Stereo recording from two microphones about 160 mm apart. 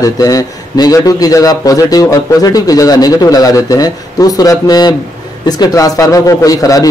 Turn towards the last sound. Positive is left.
turn(degrees=20)  # may be behind; listen again after turning